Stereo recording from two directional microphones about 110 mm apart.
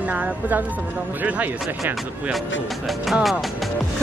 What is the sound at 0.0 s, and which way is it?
Speech, 15° right (ahead or behind).